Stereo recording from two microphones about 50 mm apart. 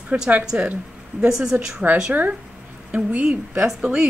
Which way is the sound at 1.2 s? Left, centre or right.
Centre.